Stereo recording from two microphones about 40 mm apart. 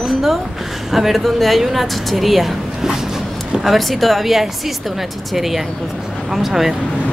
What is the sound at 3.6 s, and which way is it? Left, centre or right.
Speech, centre.